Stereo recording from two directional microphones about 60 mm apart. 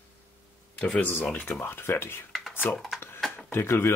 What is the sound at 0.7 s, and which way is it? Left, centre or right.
Speech, left.